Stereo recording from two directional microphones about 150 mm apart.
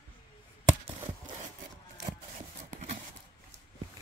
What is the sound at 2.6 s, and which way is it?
Clip-clop, 55° right (ahead or behind).